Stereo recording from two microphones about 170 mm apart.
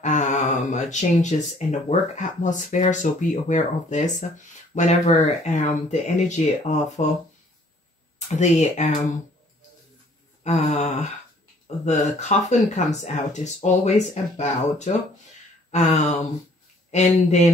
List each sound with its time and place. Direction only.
0.0 s a sound: 45° left (ahead or behind)
1.7 s speech: 45° left (ahead or behind)
8.4 s speech: 40° left (ahead or behind)
10.4 s speech: 40° left (ahead or behind)